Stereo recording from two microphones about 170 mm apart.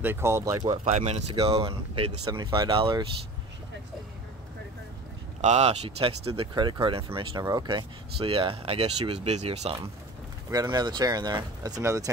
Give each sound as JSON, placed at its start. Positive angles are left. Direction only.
{"t": 0.0, "sound": "speech", "side_deg": -15}
{"t": 0.8, "sound": "speech", "side_deg": -40}
{"t": 5.4, "sound": "speech", "side_deg": -40}
{"t": 10.5, "sound": "speech", "side_deg": -25}